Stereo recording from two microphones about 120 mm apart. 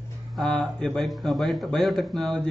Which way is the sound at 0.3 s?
5° left (ahead or behind).